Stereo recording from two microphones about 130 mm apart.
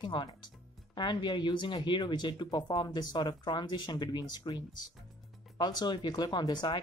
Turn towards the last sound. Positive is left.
turn(degrees=35)  # may be behind; listen again after turning